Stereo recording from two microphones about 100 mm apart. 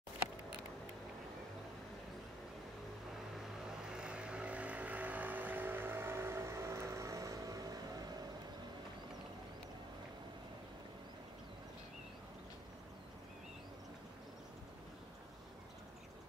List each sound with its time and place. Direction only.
3.9 s vehicle: 10° right (ahead or behind); by 8.2 s 40° right (ahead or behind)